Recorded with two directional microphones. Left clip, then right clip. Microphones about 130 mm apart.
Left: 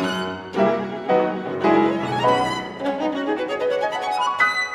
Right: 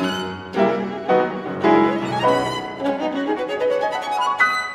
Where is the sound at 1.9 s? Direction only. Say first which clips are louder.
Right 1 dB; centre (ahead or behind).